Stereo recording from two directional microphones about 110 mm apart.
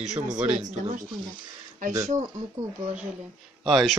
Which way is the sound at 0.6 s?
90° right.